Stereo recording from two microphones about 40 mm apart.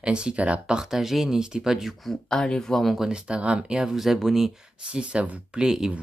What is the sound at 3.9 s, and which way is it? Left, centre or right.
Speech, centre.